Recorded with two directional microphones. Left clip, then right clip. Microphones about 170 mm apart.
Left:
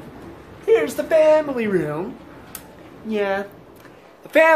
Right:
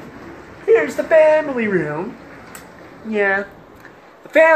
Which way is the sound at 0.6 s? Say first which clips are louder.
Right 3 dB; 5° left (ahead or behind).